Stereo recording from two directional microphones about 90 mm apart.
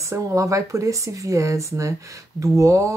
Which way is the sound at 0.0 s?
35° right (ahead or behind).